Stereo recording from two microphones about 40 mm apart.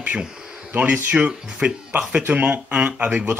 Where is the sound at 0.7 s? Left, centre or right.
Right.